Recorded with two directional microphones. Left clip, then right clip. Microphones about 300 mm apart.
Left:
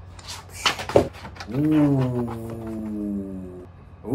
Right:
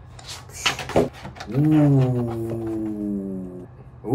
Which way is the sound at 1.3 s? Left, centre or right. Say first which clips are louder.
Right 1 dB; centre.